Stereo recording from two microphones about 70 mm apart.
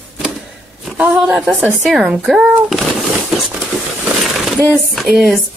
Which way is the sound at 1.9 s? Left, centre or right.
Centre.